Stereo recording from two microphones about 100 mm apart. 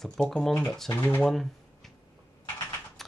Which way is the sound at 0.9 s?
15° left (ahead or behind).